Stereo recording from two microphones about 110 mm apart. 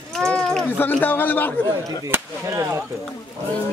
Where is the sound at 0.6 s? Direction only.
15° left (ahead or behind).